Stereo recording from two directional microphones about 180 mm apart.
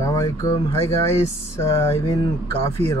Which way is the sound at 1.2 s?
15° left (ahead or behind).